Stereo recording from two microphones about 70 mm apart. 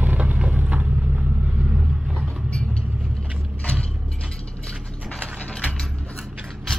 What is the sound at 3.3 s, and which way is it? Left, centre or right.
Mechanisms, centre.